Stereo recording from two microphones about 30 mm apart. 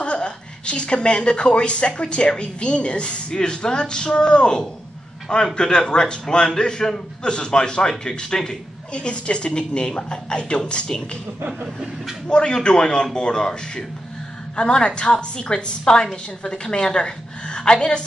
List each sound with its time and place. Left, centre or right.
0.0 s a woman's voice: left
3.3 s a man's voice: left
8.5 s a woman's voice: left
12.3 s a man's voice: left